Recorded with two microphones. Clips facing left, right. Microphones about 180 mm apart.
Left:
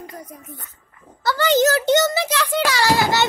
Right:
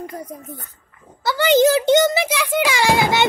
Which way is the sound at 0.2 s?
35° right (ahead or behind).